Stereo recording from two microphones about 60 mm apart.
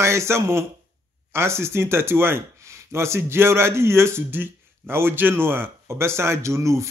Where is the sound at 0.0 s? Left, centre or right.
Right.